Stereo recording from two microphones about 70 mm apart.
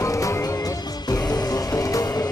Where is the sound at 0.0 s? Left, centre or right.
Left.